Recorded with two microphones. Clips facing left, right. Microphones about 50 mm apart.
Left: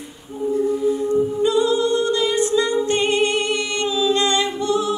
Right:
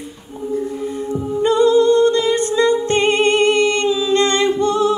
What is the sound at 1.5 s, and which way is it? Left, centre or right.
Music, right.